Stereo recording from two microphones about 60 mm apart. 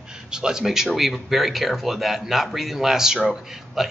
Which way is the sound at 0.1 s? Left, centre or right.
Centre.